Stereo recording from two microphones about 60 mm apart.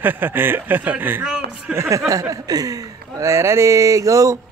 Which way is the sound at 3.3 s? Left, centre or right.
Right.